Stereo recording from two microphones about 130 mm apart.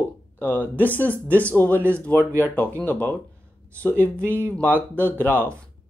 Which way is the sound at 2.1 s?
20° right (ahead or behind).